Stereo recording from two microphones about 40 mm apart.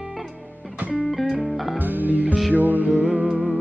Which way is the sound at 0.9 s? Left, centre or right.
Centre.